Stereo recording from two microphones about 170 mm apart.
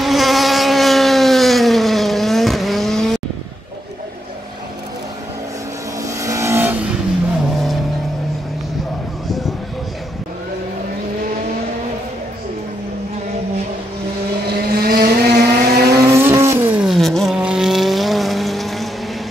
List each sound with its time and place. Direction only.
0.0 s mosquito: centre (ahead or behind)
6.0 s vehicle: 20° right (ahead or behind)
14.5 s vehicle: 65° right (ahead or behind)
15.9 s vehicle: 15° right (ahead or behind); by 18.9 s centre (ahead or behind)